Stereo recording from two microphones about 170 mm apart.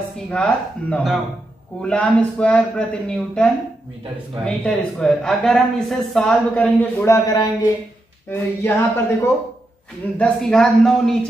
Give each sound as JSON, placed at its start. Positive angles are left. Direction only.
{"t": 0.3, "sound": "a woman's voice", "side_deg": 5}
{"t": 4.5, "sound": "speech", "side_deg": 5}
{"t": 7.2, "sound": "a sound", "side_deg": 25}
{"t": 8.3, "sound": "a woman's voice", "side_deg": 15}